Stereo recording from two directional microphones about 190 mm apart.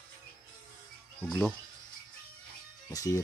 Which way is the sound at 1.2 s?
5° left (ahead or behind).